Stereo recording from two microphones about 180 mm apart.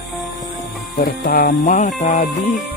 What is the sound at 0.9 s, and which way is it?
Speech, 50° left (ahead or behind).